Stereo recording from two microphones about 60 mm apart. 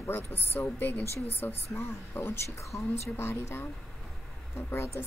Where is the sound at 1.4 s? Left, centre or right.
Left.